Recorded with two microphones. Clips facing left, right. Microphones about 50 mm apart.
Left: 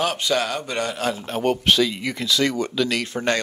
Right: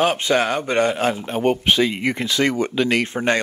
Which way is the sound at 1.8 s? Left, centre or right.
Right.